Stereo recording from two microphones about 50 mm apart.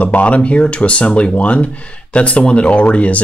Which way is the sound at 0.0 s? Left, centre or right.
Left.